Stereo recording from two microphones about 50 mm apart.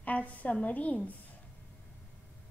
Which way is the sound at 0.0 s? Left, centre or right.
Left.